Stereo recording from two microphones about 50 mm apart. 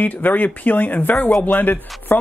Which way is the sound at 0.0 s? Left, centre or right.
Left.